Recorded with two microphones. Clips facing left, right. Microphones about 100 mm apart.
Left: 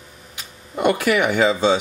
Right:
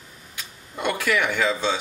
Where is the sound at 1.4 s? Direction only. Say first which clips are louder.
Left 6 dB; 30° left (ahead or behind).